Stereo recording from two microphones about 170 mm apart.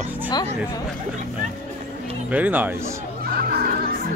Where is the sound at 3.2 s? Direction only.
65° right (ahead or behind).